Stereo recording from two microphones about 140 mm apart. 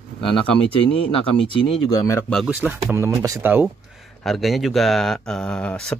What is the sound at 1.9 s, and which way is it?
Speech, 20° left (ahead or behind).